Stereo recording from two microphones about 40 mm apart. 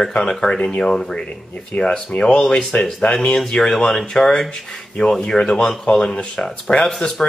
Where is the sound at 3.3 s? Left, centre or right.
Centre.